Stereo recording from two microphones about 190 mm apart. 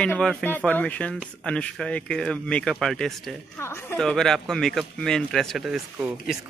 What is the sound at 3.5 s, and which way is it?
Speech, 10° left (ahead or behind).